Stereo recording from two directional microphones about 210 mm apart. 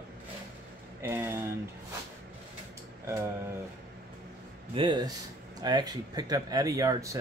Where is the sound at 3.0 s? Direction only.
15° right (ahead or behind).